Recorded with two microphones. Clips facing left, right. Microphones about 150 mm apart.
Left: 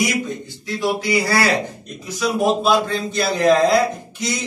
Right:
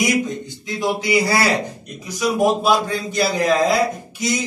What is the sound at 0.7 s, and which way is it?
A man's voice, 20° right (ahead or behind).